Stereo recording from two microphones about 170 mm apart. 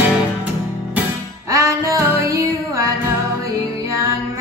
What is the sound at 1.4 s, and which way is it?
Music, 20° right (ahead or behind).